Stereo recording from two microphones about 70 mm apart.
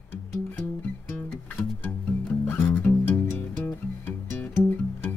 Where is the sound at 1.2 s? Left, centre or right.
Centre.